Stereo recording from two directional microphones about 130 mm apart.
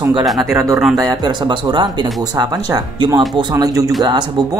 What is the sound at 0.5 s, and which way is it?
Speech, 25° right (ahead or behind).